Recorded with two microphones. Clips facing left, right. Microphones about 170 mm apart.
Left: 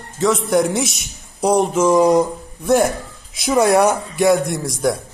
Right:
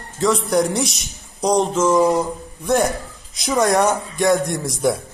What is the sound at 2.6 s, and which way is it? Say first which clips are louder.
A man's voice: left 3 dB; centre (ahead or behind).